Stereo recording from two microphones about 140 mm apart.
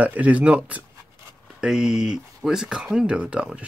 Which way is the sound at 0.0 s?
10° right (ahead or behind).